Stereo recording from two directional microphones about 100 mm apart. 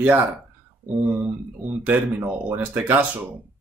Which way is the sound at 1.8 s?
20° right (ahead or behind).